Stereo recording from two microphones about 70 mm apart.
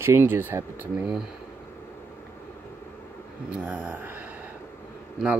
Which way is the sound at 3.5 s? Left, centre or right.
Centre.